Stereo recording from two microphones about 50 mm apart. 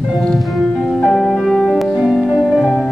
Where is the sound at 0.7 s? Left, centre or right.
Centre.